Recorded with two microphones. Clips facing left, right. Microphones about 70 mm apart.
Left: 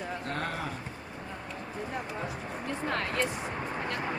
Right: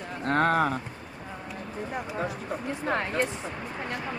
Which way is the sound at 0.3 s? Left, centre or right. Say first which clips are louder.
Right 14 dB; right.